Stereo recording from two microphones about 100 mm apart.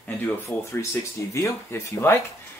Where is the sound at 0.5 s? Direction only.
20° left (ahead or behind).